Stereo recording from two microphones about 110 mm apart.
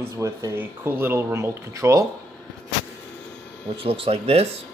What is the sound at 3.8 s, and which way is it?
Speech, 60° right (ahead or behind).